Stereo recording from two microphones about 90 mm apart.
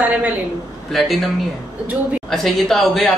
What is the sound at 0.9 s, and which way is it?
Speech, centre (ahead or behind).